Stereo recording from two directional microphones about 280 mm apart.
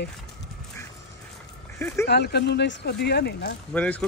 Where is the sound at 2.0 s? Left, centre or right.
Left.